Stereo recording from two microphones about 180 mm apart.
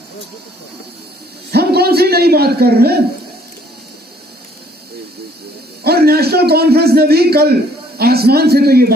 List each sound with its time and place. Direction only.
1.5 s a man's voice: 60° right (ahead or behind)
5.9 s a man's voice: 60° right (ahead or behind)